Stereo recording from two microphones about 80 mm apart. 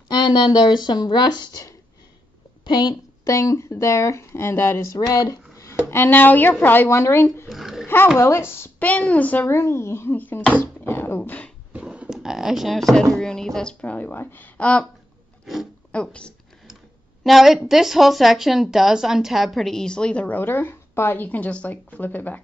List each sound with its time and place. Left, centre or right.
0.1 s speech: left
2.6 s a woman's voice: left
3.3 s speech: left
5.9 s speech: left
7.4 s dog: centre
7.8 s dog: left
8.2 s speech: left
8.7 s speech: centre
9.6 s speech: left
11.7 s speech: centre
15.9 s speech: centre
17.2 s a woman's voice: centre; by 22.4 s left